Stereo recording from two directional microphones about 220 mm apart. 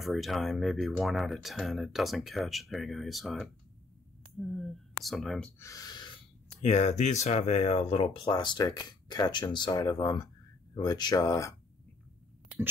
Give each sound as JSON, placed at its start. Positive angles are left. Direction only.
{"t": 0.0, "sound": "speech", "side_deg": 0}
{"t": 5.6, "sound": "speech", "side_deg": 15}
{"t": 6.6, "sound": "speech", "side_deg": 30}